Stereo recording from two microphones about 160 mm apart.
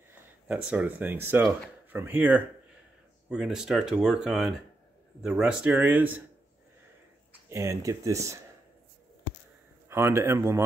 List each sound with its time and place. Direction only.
0.1 s speech: 5° right (ahead or behind)
7.4 s speech: 20° right (ahead or behind)
9.8 s speech: 15° right (ahead or behind)